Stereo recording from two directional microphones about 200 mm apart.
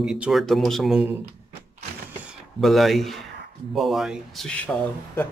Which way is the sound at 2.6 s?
Centre (ahead or behind).